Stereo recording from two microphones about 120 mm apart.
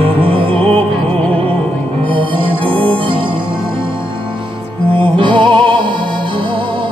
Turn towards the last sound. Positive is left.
turn(degrees=-40)  # may be behind; listen again after turning